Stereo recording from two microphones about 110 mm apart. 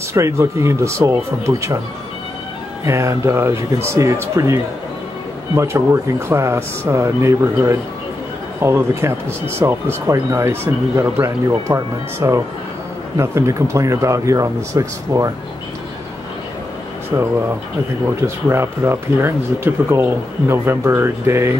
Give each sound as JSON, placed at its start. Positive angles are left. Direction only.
{"t": 0.1, "sound": "speech", "side_deg": -25}
{"t": 2.8, "sound": "speech", "side_deg": -25}
{"t": 5.6, "sound": "speech", "side_deg": -25}
{"t": 18.2, "sound": "speech", "side_deg": -25}